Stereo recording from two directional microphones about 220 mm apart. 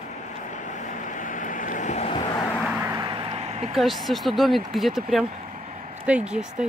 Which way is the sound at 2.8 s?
15° right (ahead or behind).